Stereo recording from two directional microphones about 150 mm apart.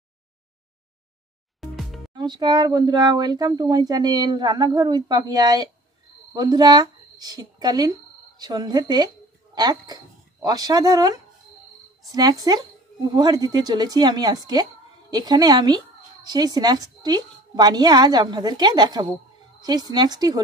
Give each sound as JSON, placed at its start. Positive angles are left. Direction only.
{"t": 1.6, "sound": "music", "side_deg": 0}
{"t": 2.1, "sound": "a woman's voice", "side_deg": -30}